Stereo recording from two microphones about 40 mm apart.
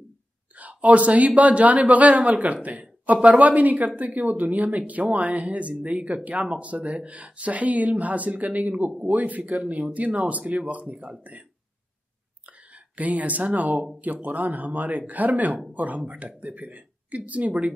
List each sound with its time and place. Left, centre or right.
0.6 s speech: right
12.4 s speech: right